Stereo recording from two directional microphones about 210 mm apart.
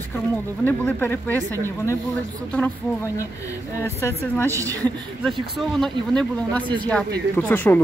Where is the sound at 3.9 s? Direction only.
10° left (ahead or behind).